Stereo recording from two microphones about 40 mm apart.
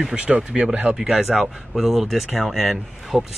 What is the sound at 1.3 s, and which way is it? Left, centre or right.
Speech, centre.